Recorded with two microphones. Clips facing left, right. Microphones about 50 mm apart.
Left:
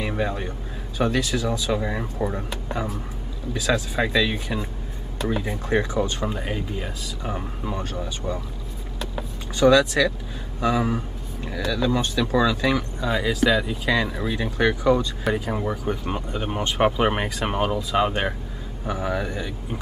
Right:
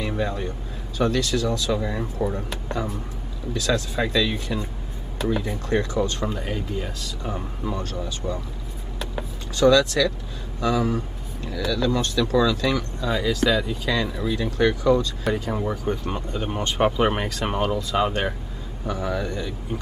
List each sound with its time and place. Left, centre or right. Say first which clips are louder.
0.0 s a sound: even; centre
0.9 s speech: right 1 dB; centre
3.5 s speech: left 1 dB; centre
9.6 s speech: left 1 dB; centre